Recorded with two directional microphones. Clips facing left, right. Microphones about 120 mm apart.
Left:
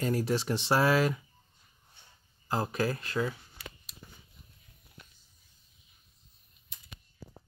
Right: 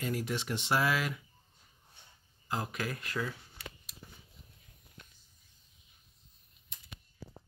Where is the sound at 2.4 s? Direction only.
35° left (ahead or behind).